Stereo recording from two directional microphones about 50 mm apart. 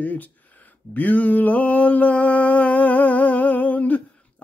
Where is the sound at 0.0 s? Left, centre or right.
Left.